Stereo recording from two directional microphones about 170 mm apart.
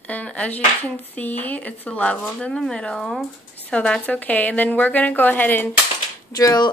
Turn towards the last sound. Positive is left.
turn(degrees=20)  # may be behind; listen again after turning